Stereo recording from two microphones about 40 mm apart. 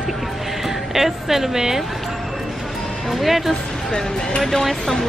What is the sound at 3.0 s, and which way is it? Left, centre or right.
Speech, centre.